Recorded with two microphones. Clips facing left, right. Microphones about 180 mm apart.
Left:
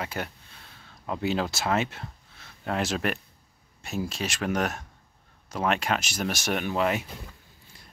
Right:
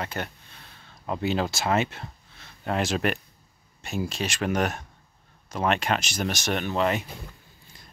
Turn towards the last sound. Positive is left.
turn(degrees=5)  # may be behind; listen again after turning